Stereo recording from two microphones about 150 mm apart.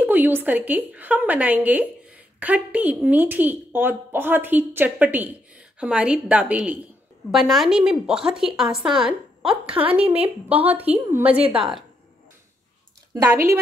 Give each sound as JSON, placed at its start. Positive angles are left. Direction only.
{"t": 0.0, "sound": "a woman's voice", "side_deg": -15}
{"t": 11.4, "sound": "a woman's voice", "side_deg": -35}
{"t": 13.1, "sound": "a woman's voice", "side_deg": -15}